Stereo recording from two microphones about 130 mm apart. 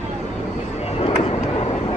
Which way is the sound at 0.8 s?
50° left (ahead or behind).